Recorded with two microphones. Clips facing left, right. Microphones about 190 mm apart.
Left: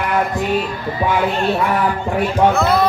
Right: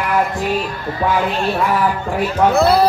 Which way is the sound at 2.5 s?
35° right (ahead or behind).